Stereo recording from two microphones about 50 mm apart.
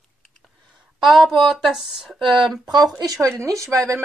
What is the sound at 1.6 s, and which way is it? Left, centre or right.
Speech, centre.